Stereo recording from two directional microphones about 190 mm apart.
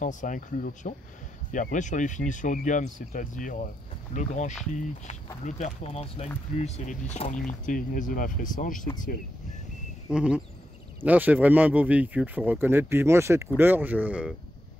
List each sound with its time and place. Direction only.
0.0 s speech: 40° left (ahead or behind)
10.0 s speech: 5° right (ahead or behind)